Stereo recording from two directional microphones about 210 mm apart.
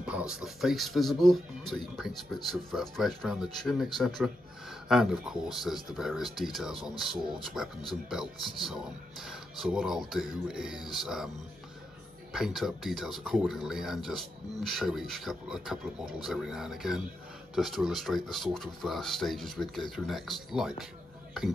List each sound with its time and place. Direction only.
0.0 s speech: 5° right (ahead or behind)
12.3 s speech: centre (ahead or behind)